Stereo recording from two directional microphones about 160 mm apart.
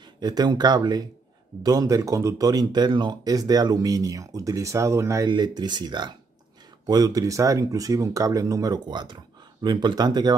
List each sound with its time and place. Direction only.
0.0 s speech: 25° right (ahead or behind)